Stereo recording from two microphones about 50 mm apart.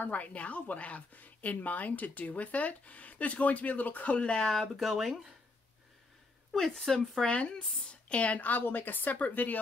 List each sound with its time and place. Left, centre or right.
0.0 s a woman's voice: left
4.2 s speech: centre
4.5 s speech: centre
6.5 s a woman's voice: centre; by 9.6 s left